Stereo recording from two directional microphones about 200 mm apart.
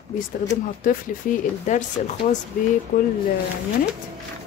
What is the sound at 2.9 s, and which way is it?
Speech, 40° left (ahead or behind).